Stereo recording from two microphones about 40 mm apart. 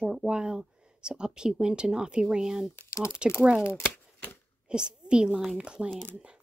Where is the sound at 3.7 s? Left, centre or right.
Left.